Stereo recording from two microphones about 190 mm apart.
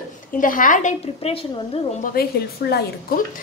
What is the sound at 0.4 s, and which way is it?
A woman's voice, 45° left (ahead or behind).